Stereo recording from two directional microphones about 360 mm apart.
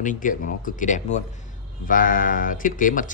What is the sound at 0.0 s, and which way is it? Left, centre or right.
A man's voice, left.